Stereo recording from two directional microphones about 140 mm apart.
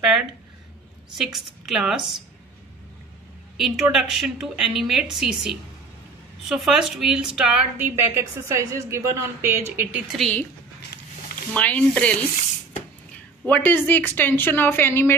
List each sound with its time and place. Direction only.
1.1 s a woman's voice: 5° right (ahead or behind)
3.5 s a woman's voice: 5° right (ahead or behind)
10.1 s a woman's voice: 5° left (ahead or behind)
11.5 s a woman's voice: 10° left (ahead or behind)